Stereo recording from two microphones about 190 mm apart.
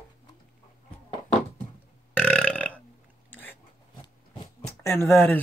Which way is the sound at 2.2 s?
5° left (ahead or behind).